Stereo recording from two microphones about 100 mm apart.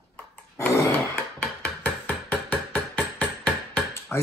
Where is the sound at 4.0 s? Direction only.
25° left (ahead or behind).